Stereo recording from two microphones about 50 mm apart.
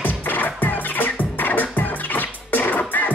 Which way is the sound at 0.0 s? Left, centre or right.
Left.